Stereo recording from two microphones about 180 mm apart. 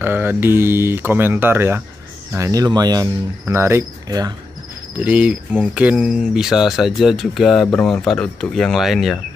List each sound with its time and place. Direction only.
0.0 s speech: 10° right (ahead or behind)